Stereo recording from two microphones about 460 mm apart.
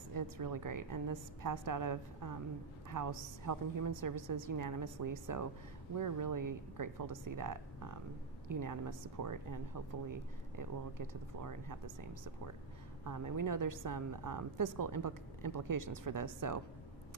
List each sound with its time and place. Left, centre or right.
0.1 s a woman's voice: right